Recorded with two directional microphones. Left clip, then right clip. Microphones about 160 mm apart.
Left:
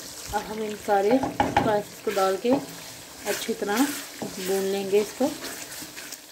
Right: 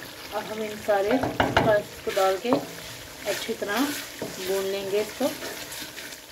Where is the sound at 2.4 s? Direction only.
20° left (ahead or behind).